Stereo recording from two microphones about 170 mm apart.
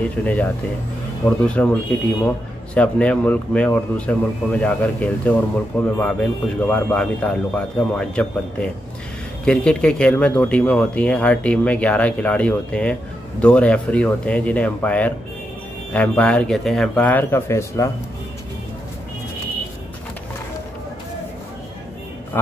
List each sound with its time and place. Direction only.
0.2 s a man's voice: 10° left (ahead or behind)